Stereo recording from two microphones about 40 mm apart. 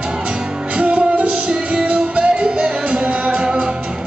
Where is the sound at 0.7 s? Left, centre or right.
Right.